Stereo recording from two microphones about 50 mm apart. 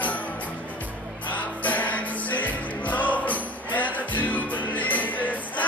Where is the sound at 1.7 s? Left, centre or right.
Left.